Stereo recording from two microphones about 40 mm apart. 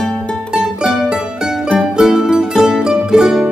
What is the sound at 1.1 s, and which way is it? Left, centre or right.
Mandolin, right.